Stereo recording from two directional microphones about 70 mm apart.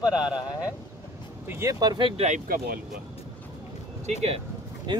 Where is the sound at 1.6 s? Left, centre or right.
Right.